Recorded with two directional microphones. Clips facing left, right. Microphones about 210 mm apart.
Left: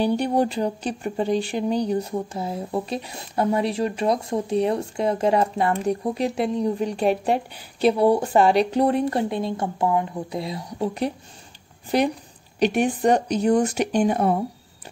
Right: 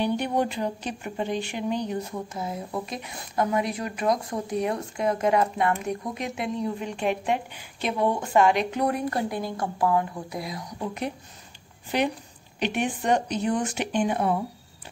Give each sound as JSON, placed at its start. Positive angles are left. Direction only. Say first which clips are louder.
{"t": 0.0, "sound": "speech", "louder": "left 4 dB", "side_deg": 35}
{"t": 12.5, "sound": "speech", "louder": "left 6 dB", "side_deg": 40}